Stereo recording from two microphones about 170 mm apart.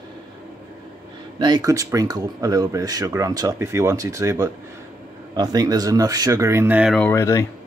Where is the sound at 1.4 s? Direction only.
25° right (ahead or behind); by 7.0 s 10° right (ahead or behind).